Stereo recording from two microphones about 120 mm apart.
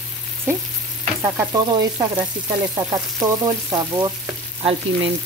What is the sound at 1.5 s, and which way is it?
Frying, 35° right (ahead or behind).